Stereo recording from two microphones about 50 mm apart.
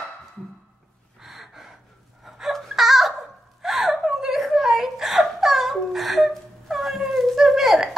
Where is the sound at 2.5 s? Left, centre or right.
Centre.